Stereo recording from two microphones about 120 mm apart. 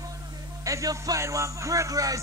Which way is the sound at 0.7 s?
30° right (ahead or behind).